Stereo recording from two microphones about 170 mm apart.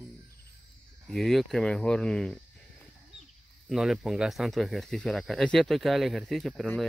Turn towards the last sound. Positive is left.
turn(degrees=0)  # may be behind; listen again after turning